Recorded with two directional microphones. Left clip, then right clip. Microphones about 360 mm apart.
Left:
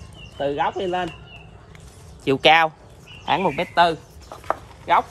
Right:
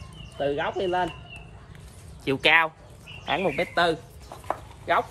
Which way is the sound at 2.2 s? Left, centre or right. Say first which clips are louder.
Left 5 dB; left.